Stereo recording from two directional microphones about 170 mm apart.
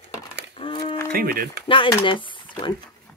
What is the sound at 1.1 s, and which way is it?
Speech, 60° right (ahead or behind).